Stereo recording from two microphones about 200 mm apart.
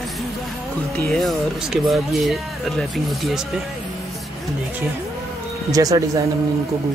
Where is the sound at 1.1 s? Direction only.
Centre (ahead or behind).